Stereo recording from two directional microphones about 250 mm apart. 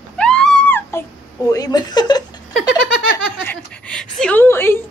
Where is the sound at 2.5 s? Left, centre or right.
Centre.